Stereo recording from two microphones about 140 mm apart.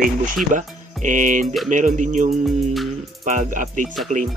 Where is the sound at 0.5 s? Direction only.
65° right (ahead or behind).